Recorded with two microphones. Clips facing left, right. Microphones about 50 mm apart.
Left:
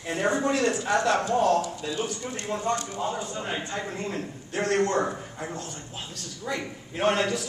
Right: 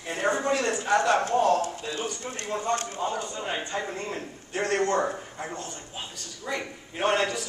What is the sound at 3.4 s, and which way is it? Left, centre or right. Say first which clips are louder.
A man's voice: right 1 dB; centre.